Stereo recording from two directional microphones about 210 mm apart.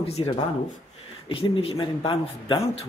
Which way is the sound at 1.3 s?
25° left (ahead or behind).